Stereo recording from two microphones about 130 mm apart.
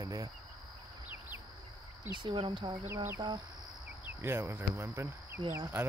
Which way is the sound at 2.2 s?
40° right (ahead or behind).